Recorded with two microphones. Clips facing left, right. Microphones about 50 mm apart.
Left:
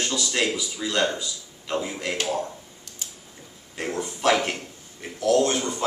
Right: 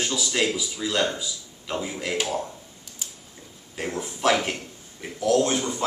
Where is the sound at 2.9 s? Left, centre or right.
Centre.